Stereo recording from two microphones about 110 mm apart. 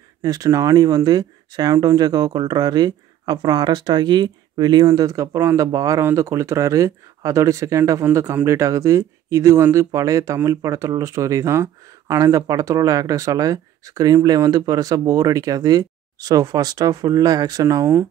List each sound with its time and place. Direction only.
0.2 s speech: 35° right (ahead or behind)